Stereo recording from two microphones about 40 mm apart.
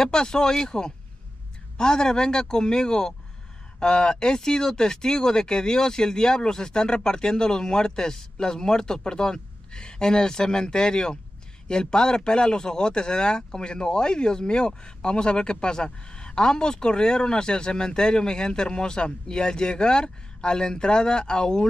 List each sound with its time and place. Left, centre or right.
0.0 s speech: centre